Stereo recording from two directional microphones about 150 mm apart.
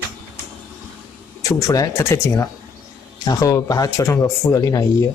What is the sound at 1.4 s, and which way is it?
Speech, 20° left (ahead or behind).